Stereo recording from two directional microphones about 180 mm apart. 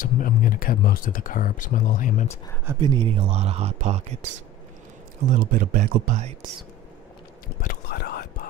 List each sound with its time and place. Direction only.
0.0 s speech: 50° left (ahead or behind)
2.8 s speech: 25° right (ahead or behind)
5.3 s speech: 50° right (ahead or behind)
7.6 s whispering: 60° left (ahead or behind)